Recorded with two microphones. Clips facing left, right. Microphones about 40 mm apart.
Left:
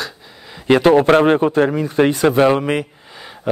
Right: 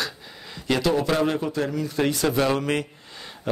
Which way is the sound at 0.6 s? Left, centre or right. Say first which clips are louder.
Left 10 dB; left.